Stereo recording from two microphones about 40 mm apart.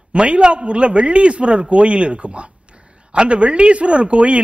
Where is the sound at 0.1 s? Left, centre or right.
Right.